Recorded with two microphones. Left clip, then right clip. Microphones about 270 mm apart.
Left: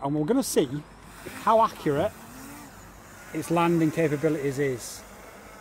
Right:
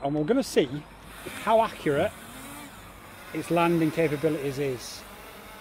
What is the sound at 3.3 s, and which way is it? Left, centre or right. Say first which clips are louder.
Speech: even; left.